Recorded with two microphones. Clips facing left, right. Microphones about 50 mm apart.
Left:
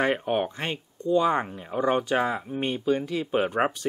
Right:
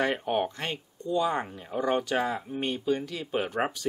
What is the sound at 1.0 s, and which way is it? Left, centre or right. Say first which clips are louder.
Speech: left 5 dB; left.